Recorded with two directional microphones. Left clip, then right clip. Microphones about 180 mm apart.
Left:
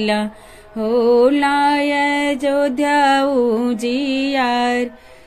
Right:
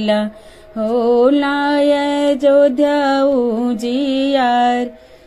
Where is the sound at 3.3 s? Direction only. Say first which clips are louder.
Right 1 dB; 25° left (ahead or behind).